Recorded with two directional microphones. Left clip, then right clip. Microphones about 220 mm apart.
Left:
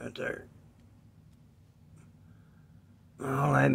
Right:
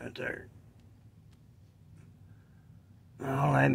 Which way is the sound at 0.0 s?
10° left (ahead or behind).